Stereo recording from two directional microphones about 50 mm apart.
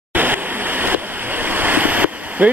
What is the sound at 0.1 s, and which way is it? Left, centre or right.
Waves, right.